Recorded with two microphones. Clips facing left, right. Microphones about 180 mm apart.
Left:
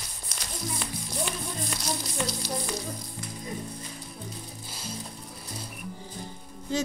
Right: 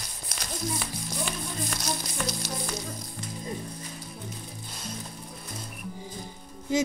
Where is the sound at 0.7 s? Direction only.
Centre (ahead or behind).